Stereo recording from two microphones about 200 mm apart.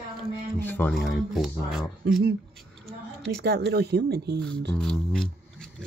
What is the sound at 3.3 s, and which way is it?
Speech, 55° right (ahead or behind).